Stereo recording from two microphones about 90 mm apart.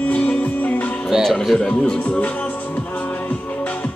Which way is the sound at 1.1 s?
5° left (ahead or behind).